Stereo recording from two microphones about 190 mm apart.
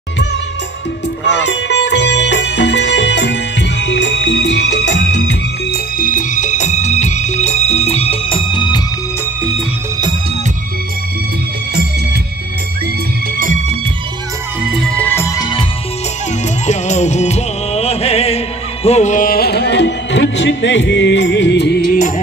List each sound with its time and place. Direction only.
1.4 s music: 65° left (ahead or behind)
5.9 s music: 45° left (ahead or behind); by 8.8 s 25° left (ahead or behind)
13.4 s music: 45° right (ahead or behind)
14.6 s music: 5° right (ahead or behind)
15.0 s music: 10° left (ahead or behind)
16.6 s music: 35° left (ahead or behind); by 21.9 s 60° left (ahead or behind)